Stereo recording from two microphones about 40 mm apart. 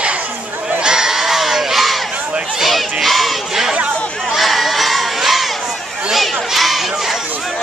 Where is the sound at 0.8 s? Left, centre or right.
Centre.